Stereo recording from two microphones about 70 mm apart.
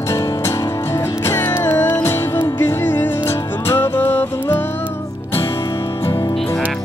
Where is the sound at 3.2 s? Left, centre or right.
Left.